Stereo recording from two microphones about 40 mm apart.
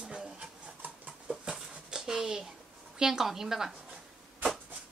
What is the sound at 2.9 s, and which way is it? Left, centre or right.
Speech, centre.